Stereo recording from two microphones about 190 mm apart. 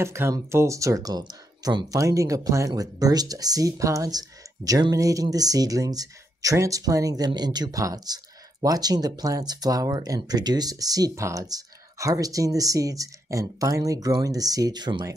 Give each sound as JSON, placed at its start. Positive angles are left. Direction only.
{"t": 0.0, "sound": "speech", "side_deg": -15}